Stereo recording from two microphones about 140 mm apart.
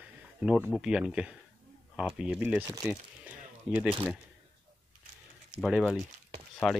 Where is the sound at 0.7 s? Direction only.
5° right (ahead or behind).